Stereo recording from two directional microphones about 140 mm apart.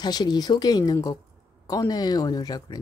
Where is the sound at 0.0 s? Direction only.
30° left (ahead or behind).